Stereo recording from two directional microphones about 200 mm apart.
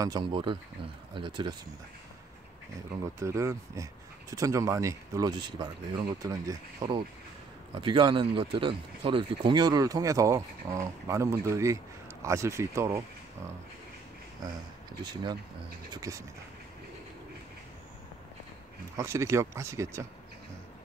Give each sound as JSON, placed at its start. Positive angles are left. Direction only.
{"t": 0.0, "sound": "speech", "side_deg": -20}
{"t": 3.2, "sound": "speech", "side_deg": -15}
{"t": 15.9, "sound": "speech", "side_deg": -15}
{"t": 18.9, "sound": "speech", "side_deg": -15}